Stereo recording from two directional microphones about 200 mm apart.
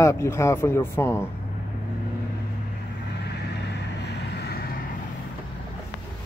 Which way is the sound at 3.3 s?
55° left (ahead or behind).